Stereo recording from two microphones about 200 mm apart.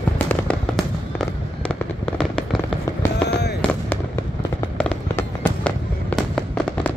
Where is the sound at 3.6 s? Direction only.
10° left (ahead or behind).